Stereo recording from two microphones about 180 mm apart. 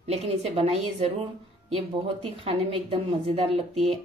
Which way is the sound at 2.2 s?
30° right (ahead or behind).